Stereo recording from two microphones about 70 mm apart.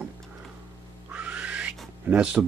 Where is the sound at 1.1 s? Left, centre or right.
Centre.